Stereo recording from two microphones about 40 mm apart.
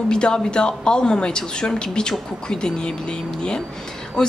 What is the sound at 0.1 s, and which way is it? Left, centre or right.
A woman's voice, left.